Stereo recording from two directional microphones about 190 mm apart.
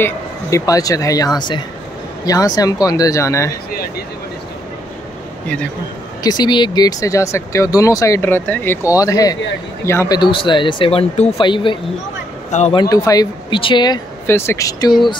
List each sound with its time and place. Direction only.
0.0 s speech: 15° left (ahead or behind)
6.2 s speech: 20° left (ahead or behind)
12.4 s speech: 40° left (ahead or behind)
12.7 s speech: 20° left (ahead or behind)